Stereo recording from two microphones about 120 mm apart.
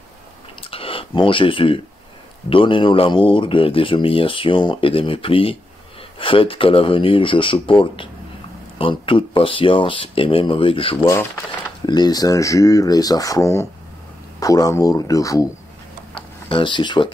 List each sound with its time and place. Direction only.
0.6 s speech: 50° left (ahead or behind)
11.8 s speech: 35° left (ahead or behind)
16.4 s speech: 45° left (ahead or behind)